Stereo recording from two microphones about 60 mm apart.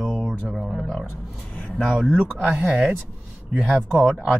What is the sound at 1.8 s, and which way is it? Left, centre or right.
Speech, centre.